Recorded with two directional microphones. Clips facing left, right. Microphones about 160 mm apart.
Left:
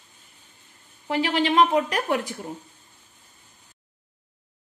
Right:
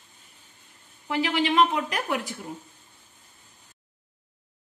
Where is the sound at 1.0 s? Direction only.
35° left (ahead or behind).